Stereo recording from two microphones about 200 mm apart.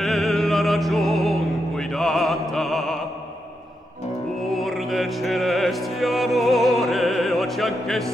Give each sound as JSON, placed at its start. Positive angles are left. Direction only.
{"t": 0.0, "sound": "music", "side_deg": 0}
{"t": 4.5, "sound": "music", "side_deg": 0}